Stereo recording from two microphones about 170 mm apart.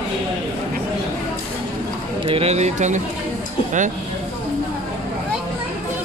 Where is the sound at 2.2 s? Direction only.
35° right (ahead or behind).